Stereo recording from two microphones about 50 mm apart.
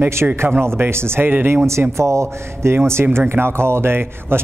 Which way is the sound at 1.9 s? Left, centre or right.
Right.